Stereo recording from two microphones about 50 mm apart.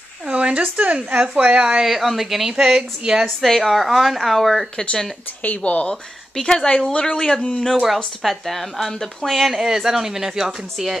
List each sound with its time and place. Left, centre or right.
0.3 s speech: right
1.9 s speech: centre
2.5 s a woman's voice: centre
3.3 s speech: centre
4.7 s a woman's voice: centre
5.4 s a woman's voice: left; by 7.3 s centre
8.2 s speech: centre